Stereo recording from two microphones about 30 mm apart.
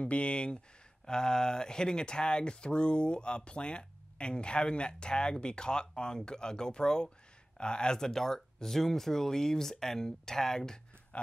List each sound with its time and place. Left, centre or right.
0.0 s speech: left
1.0 s speech: left